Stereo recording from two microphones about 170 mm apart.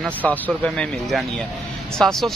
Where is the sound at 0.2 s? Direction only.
5° left (ahead or behind).